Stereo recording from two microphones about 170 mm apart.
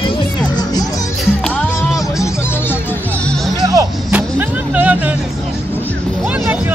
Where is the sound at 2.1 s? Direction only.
15° left (ahead or behind).